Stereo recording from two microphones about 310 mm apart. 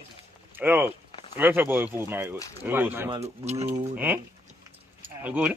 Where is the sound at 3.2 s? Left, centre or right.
Right.